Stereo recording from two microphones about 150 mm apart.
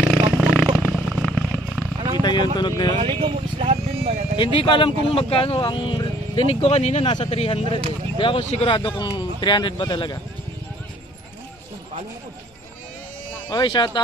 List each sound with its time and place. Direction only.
0.1 s a sound: centre (ahead or behind)
2.1 s speech: 30° left (ahead or behind)
3.0 s a sound: 35° right (ahead or behind)
4.4 s speech: 35° left (ahead or behind)
6.6 s speech: 50° left (ahead or behind)
7.6 s speech: 45° right (ahead or behind)
8.2 s speech: 35° left (ahead or behind)
13.5 s speech: 30° left (ahead or behind)